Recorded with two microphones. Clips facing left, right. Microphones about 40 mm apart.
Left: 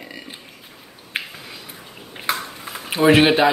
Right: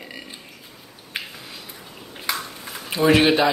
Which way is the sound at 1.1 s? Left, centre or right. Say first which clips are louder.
Left 4 dB; left.